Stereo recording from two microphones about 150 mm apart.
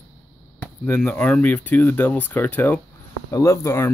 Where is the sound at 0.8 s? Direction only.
10° left (ahead or behind).